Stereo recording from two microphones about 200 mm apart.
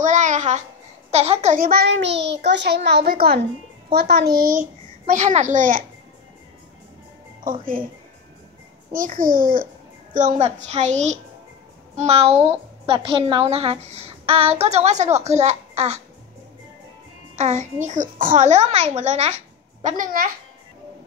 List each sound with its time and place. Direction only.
0.0 s a sound: 40° right (ahead or behind)
1.1 s a child's voice: 30° right (ahead or behind)
8.9 s a child's voice: 40° right (ahead or behind)
17.4 s a woman's voice: 35° right (ahead or behind)